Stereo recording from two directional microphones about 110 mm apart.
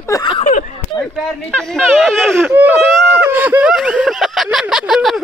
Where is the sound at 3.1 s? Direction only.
15° right (ahead or behind).